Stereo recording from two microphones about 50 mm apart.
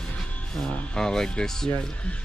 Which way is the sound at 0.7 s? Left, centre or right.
Centre.